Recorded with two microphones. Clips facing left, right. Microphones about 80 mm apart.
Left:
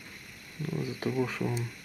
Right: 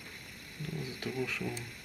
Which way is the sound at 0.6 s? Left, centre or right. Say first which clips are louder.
Left 7 dB; left.